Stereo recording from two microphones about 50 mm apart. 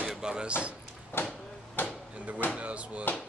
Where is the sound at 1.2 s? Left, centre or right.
Left.